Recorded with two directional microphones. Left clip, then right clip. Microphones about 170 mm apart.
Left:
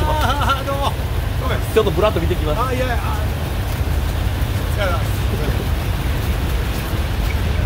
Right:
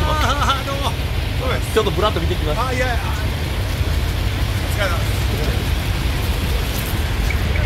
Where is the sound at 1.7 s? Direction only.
15° left (ahead or behind).